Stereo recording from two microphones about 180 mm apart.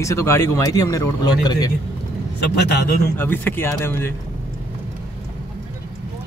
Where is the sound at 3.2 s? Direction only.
10° left (ahead or behind).